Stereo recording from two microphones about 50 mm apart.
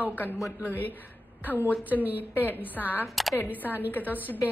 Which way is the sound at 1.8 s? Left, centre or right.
Right.